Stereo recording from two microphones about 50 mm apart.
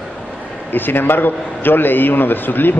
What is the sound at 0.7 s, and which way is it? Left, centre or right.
A man's voice, left.